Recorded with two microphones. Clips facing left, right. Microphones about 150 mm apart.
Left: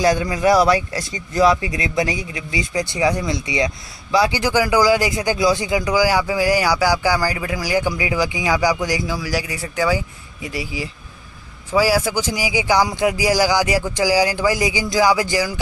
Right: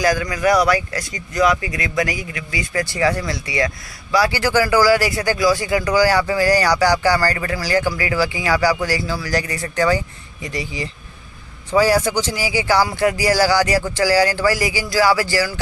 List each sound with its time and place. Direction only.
0.0 s speech: 25° left (ahead or behind)